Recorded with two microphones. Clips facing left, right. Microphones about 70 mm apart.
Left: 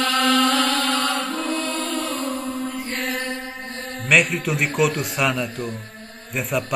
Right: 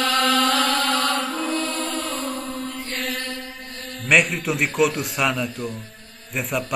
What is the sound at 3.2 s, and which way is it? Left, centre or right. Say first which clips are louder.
Mantra: left 3 dB; left.